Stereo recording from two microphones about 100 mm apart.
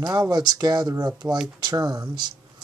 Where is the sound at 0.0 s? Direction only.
40° right (ahead or behind).